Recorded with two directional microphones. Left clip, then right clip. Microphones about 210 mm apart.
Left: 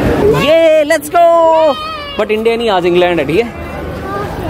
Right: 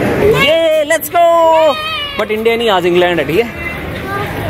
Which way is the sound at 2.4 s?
10° left (ahead or behind).